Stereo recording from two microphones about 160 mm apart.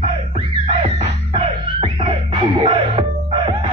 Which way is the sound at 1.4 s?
35° right (ahead or behind).